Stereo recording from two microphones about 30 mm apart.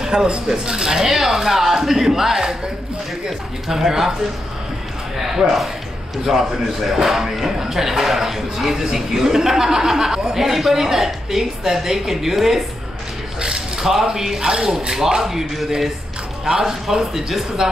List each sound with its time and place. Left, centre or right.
0.0 s a sound: right
0.7 s speech: right
1.0 s speech: centre
5.2 s speech: centre
6.1 s speech: centre
13.4 s a sound: right
14.4 s speech: right
15.2 s speech: centre
16.4 s speech: right